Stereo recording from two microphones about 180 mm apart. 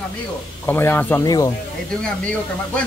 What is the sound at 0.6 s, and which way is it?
Speech, 10° left (ahead or behind).